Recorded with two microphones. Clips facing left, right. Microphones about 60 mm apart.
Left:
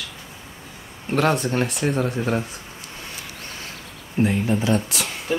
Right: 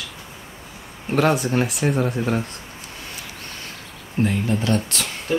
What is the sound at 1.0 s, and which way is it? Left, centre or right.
Speech, centre.